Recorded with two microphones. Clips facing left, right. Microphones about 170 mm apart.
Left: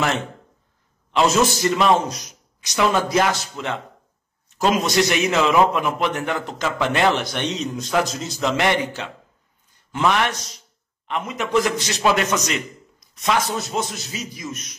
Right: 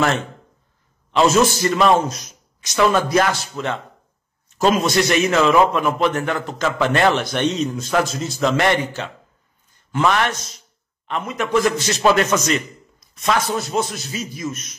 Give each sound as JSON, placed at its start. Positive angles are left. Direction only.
{"t": 1.1, "sound": "a man's voice", "side_deg": 15}